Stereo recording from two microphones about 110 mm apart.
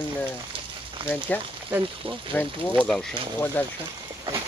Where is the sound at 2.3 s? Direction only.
20° left (ahead or behind).